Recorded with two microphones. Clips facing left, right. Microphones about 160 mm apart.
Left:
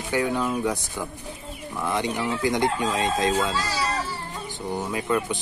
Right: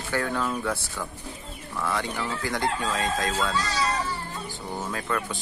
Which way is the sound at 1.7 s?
20° left (ahead or behind).